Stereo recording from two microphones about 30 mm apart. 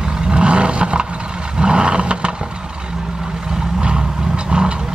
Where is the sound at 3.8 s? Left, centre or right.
Right.